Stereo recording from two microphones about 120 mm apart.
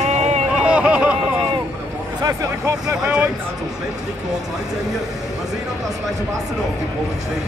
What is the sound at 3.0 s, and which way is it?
Speech, 10° right (ahead or behind).